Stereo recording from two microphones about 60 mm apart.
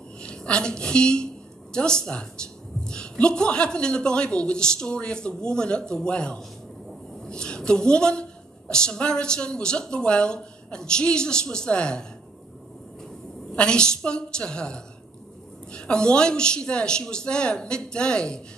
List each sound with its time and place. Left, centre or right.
0.2 s a woman's voice: centre
13.6 s a woman's voice: centre